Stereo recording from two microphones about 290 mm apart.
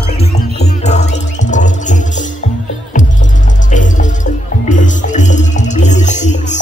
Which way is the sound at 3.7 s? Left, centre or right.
Left.